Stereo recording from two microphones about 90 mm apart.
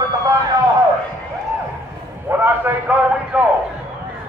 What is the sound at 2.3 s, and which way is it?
A man's voice, 20° right (ahead or behind).